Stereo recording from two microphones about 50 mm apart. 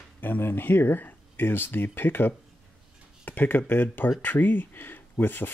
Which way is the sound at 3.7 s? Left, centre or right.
Left.